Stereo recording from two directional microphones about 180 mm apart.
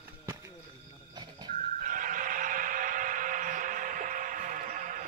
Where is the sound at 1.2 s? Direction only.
25° right (ahead or behind).